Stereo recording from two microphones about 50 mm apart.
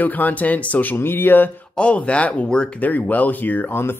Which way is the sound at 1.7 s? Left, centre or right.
Left.